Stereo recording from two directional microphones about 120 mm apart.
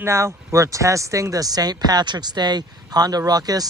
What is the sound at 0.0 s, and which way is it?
Speech, 25° right (ahead or behind).